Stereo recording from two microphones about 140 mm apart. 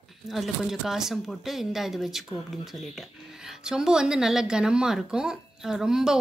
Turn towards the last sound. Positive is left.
turn(degrees=-5)  # may be behind; listen again after turning